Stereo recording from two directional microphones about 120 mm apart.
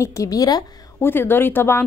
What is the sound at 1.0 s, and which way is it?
Speech, 15° left (ahead or behind).